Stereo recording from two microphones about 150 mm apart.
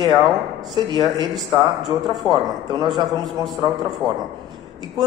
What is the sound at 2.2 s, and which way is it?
Speech, 30° right (ahead or behind).